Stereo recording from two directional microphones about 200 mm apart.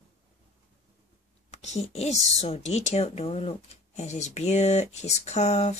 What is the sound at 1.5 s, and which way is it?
Speech, 35° left (ahead or behind).